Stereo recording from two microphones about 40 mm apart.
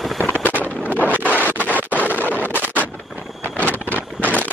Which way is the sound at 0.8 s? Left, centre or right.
Left.